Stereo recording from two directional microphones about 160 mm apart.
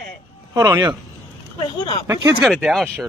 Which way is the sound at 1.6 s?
30° left (ahead or behind).